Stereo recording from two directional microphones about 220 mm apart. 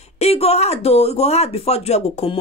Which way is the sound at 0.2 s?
30° left (ahead or behind).